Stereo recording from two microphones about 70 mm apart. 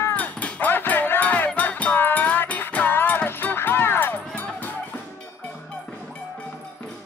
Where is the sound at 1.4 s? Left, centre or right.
Left.